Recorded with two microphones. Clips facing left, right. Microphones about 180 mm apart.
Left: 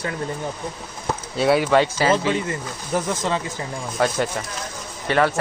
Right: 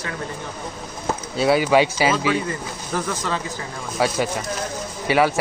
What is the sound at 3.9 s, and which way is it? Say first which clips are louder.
Speech: right 1 dB; 5° right (ahead or behind).